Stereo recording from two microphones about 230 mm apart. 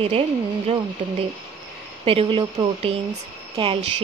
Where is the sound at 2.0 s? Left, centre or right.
Right.